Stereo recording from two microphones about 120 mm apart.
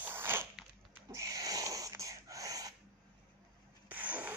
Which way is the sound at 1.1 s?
30° right (ahead or behind).